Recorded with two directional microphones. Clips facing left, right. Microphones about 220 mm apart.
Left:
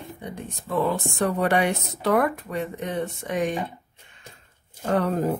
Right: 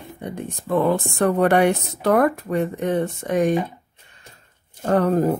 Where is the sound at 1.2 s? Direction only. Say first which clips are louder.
Right 5 dB; 55° right (ahead or behind).